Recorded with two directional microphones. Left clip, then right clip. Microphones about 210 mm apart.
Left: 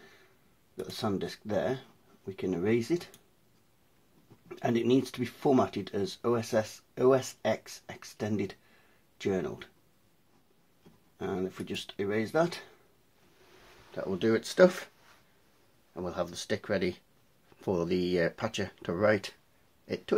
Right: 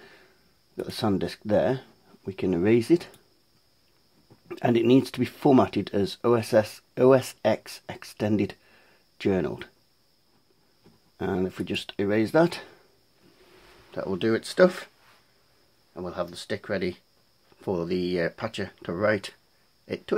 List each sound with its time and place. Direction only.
0.7 s speech: 45° right (ahead or behind)
4.5 s speech: 50° right (ahead or behind)
11.1 s speech: 50° right (ahead or behind)
13.9 s speech: 25° right (ahead or behind); by 14.9 s 10° right (ahead or behind)
15.9 s speech: 5° right (ahead or behind)